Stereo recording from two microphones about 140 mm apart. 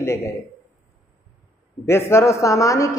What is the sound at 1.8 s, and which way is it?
A man's voice, 20° left (ahead or behind).